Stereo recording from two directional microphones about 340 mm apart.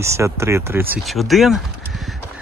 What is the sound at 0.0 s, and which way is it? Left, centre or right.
Speech, centre.